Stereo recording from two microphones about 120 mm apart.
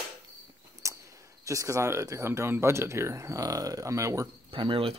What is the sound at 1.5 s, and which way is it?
Speech, 25° right (ahead or behind).